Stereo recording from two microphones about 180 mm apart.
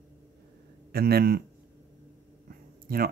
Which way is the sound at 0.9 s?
60° right (ahead or behind).